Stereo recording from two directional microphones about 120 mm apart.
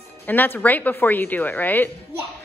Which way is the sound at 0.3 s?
15° left (ahead or behind).